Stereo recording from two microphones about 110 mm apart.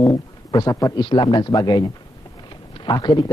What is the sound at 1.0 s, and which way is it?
A man's voice, 40° left (ahead or behind).